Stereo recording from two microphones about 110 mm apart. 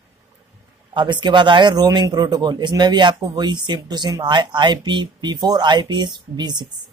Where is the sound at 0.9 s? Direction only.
45° right (ahead or behind).